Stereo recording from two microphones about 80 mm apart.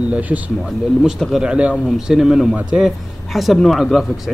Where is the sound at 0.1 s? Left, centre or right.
Centre.